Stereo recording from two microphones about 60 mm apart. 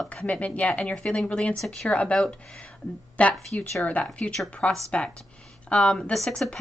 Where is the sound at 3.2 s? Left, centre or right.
Left.